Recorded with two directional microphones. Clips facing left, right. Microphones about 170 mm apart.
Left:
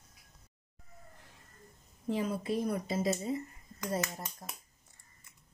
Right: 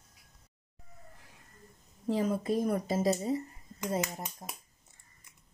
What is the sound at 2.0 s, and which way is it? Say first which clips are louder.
Speech: right 3 dB; 40° right (ahead or behind).